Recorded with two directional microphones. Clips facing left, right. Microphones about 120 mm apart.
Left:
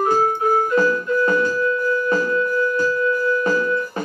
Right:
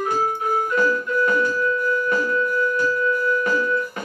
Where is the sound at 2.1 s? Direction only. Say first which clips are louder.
Left 2 dB; 30° left (ahead or behind).